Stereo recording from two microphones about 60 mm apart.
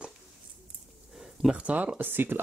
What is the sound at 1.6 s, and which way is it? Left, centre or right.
Speech, right.